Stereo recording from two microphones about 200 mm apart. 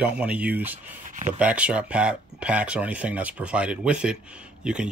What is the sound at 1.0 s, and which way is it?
Speech, 40° right (ahead or behind).